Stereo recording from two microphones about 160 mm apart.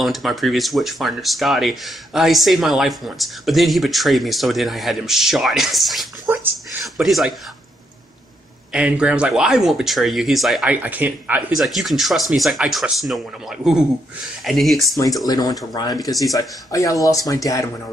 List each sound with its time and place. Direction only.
0.0 s speech: centre (ahead or behind)
6.3 s a sound: 10° right (ahead or behind)
6.8 s speech: centre (ahead or behind)
8.7 s speech: 5° right (ahead or behind)
15.2 s speech: 25° left (ahead or behind)